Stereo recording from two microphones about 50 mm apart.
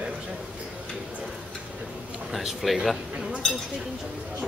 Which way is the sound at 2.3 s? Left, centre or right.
Centre.